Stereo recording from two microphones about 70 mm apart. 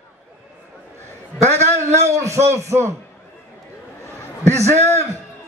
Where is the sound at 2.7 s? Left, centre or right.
Right.